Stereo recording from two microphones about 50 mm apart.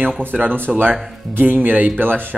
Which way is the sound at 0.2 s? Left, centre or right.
Right.